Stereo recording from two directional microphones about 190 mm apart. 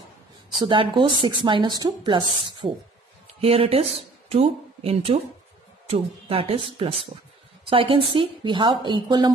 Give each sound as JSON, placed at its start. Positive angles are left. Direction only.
{"t": 0.6, "sound": "speech", "side_deg": -25}